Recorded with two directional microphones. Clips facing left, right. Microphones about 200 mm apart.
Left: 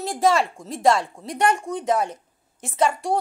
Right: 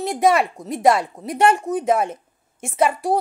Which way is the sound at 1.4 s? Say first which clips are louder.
Right 4 dB; 25° right (ahead or behind).